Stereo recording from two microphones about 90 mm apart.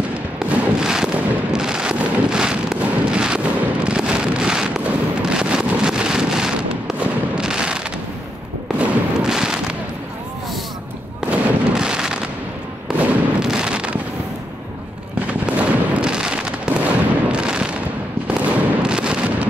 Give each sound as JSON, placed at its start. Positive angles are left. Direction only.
{"t": 0.4, "sound": "fireworks", "side_deg": -10}
{"t": 11.2, "sound": "fireworks", "side_deg": -10}
{"t": 13.5, "sound": "a sound", "side_deg": -10}
{"t": 15.1, "sound": "fireworks", "side_deg": -15}